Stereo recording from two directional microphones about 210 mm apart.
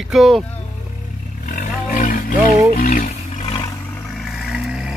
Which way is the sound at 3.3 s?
25° left (ahead or behind).